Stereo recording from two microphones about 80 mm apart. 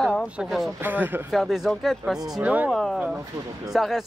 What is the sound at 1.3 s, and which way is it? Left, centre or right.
Speech, centre.